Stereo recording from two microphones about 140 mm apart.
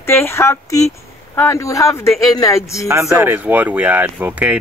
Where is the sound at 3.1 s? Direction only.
15° right (ahead or behind).